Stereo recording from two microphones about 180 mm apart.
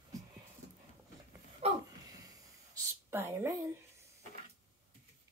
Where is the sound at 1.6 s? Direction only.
35° right (ahead or behind).